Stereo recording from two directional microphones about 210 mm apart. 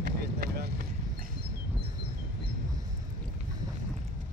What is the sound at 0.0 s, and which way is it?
Vehicle, 45° right (ahead or behind).